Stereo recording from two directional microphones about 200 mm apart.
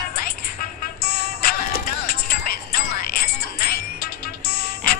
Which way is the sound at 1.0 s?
50° left (ahead or behind).